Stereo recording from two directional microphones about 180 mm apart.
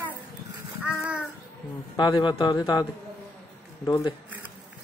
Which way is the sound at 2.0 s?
25° left (ahead or behind).